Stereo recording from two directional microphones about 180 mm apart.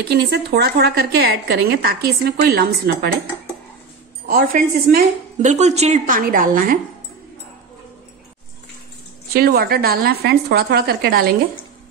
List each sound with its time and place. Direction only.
0.0 s a woman's voice: 65° right (ahead or behind)
4.3 s a woman's voice: 55° right (ahead or behind)
9.3 s a woman's voice: 55° right (ahead or behind)